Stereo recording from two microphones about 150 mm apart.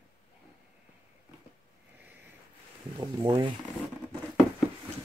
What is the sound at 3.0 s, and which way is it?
Speech, 30° right (ahead or behind).